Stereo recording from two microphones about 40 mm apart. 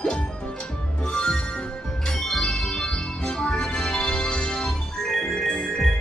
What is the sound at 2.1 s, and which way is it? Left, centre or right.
Music, centre.